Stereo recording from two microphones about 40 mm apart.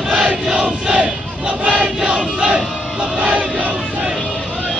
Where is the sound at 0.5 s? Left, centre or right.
Right.